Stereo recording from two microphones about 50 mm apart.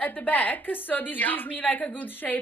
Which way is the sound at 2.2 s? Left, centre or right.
Centre.